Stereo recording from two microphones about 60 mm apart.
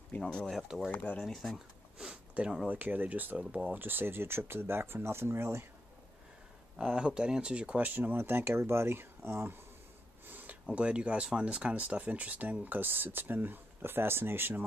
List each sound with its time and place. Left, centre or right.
0.2 s speech: centre
0.9 s speech: left
1.2 s speech: centre
2.0 s a sound: centre
2.7 s speech: right
3.8 s speech: right
6.8 s speech: centre; by 9.6 s right
10.2 s speech: right